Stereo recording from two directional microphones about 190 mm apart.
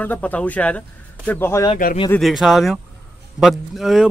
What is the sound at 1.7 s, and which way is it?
Speech, 40° left (ahead or behind).